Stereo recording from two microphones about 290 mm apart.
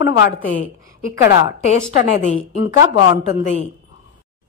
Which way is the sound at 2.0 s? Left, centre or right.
Left.